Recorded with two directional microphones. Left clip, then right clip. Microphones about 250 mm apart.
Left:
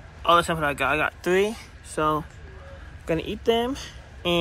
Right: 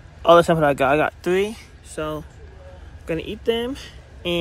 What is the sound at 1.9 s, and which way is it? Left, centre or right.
Speech, centre.